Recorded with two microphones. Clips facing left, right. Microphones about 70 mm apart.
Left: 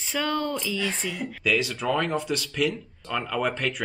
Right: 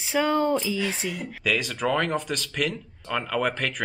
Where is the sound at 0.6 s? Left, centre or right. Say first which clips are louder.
Right 1 dB; centre.